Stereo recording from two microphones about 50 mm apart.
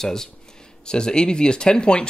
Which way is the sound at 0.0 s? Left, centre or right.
Centre.